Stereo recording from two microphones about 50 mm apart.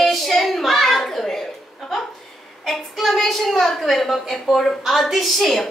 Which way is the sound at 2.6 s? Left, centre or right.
Centre.